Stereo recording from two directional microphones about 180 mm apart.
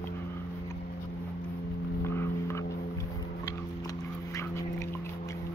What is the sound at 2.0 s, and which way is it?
Vehicle, 15° left (ahead or behind).